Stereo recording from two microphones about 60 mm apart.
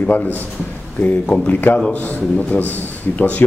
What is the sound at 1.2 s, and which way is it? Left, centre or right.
Speech, left.